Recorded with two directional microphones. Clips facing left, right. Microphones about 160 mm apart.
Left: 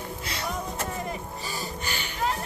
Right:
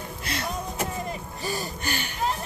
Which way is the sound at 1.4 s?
55° right (ahead or behind).